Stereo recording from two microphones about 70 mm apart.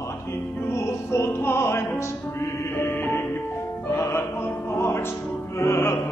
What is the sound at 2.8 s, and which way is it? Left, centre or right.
Music, left.